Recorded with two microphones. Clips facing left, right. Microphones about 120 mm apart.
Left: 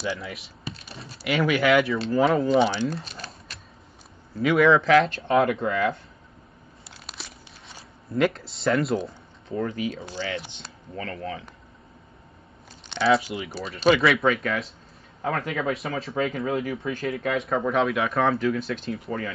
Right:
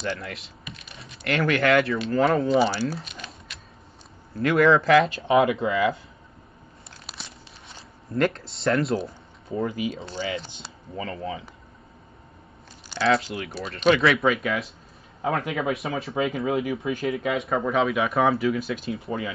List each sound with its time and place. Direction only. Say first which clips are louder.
0.0 s speech: even; 5° left (ahead or behind)
0.7 s computer keyboard: left 6 dB; 35° left (ahead or behind)
1.2 s speech: even; 5° left (ahead or behind)
3.0 s speech: left 1 dB; 35° left (ahead or behind)
4.4 s speech: even; centre (ahead or behind)
7.1 s a sound: even; centre (ahead or behind)
10.2 s speech: right 2 dB; 15° right (ahead or behind)
12.9 s speech: left 1 dB; centre (ahead or behind)